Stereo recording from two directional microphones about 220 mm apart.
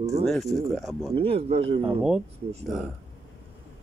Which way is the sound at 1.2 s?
25° right (ahead or behind).